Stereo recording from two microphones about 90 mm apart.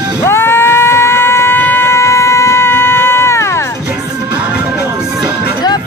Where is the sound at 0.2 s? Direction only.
25° left (ahead or behind).